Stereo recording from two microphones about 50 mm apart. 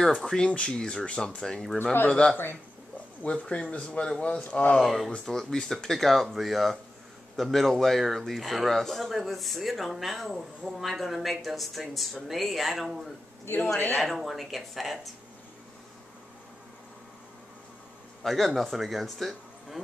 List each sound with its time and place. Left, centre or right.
0.2 s speech: centre
4.7 s speech: centre
13.9 s speech: centre
18.2 s speech: centre